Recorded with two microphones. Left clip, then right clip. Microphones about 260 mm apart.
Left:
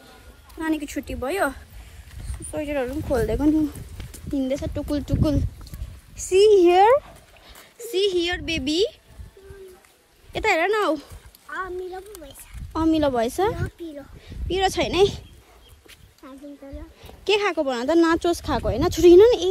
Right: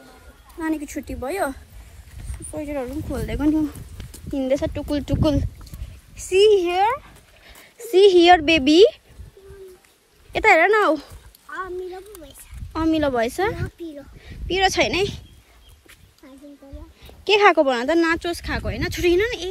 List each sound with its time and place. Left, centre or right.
0.6 s a woman's voice: centre
2.1 s a sound: centre
3.3 s speech: centre
6.7 s speech: centre
7.4 s speech: centre
10.3 s speech: centre
17.0 s speech: centre